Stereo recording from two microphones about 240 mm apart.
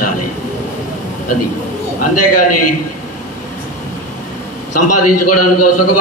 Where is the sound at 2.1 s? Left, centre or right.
Left.